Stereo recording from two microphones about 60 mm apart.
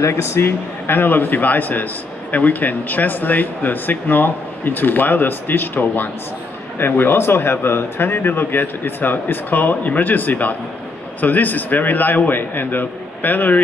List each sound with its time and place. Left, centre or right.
0.0 s speech: left